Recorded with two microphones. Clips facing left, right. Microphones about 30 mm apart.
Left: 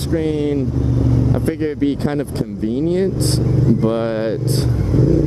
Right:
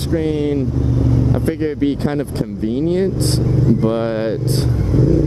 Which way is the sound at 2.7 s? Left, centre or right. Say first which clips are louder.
Even; centre.